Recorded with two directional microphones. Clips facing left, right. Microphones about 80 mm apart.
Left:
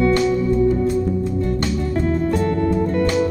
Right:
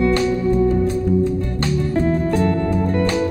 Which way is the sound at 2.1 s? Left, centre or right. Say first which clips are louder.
Left 1 dB; right.